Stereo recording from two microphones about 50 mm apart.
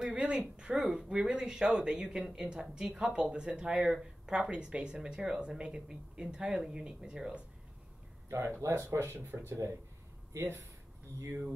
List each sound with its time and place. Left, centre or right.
0.0 s a sound: right
0.6 s speech: centre
8.3 s speech: right
9.1 s speech: right